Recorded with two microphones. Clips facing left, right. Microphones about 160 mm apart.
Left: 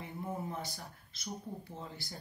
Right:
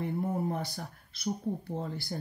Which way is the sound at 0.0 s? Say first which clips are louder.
Right 9 dB; 60° right (ahead or behind).